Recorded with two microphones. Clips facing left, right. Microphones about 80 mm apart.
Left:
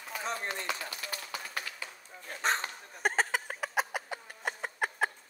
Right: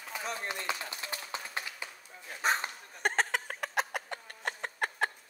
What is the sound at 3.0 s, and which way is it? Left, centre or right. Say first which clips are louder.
Chicken: even; centre.